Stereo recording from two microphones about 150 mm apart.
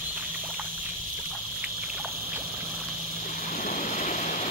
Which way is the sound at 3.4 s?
65° left (ahead or behind).